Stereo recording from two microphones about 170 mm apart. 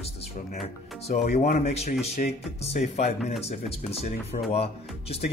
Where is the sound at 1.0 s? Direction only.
40° left (ahead or behind).